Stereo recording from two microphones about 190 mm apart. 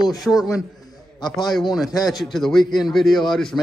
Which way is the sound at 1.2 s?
20° left (ahead or behind).